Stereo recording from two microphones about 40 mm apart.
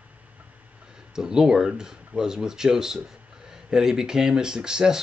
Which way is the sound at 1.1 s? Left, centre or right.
Centre.